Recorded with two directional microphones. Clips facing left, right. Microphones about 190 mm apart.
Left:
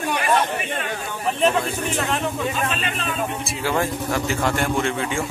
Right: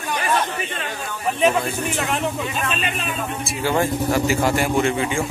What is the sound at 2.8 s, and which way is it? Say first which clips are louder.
Speech: right 1 dB; 10° right (ahead or behind).